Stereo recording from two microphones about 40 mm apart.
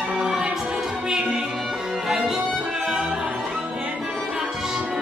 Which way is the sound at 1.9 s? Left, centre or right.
Centre.